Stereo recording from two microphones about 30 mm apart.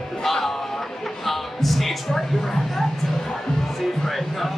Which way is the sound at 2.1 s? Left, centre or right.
Centre.